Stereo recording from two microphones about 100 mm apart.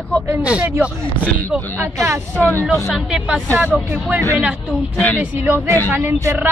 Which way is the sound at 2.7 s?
Centre (ahead or behind).